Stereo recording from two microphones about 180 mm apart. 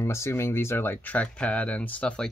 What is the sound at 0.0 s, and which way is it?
Speech, 15° left (ahead or behind).